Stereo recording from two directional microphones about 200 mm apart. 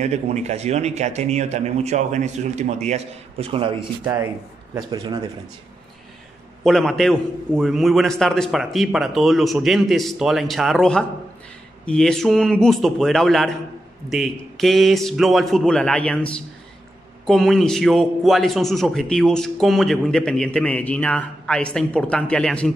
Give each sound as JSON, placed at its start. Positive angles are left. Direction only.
{"t": 0.0, "sound": "a man's voice", "side_deg": -35}
{"t": 4.0, "sound": "speech", "side_deg": -15}
{"t": 6.6, "sound": "a man's voice", "side_deg": 0}